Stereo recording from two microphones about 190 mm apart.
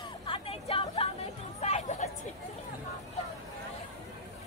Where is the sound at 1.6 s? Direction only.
35° left (ahead or behind).